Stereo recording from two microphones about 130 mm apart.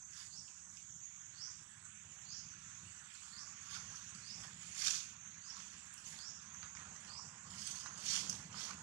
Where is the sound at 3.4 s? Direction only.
20° right (ahead or behind).